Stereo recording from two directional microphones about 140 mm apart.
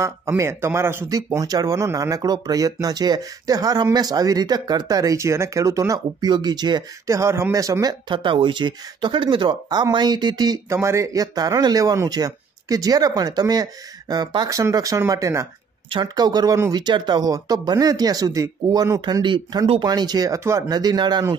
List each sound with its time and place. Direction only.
0.0 s speech: 20° right (ahead or behind)
8.1 s speech: 35° right (ahead or behind)